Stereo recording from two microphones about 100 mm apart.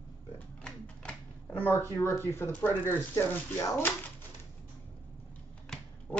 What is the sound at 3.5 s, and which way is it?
Speech, 35° left (ahead or behind).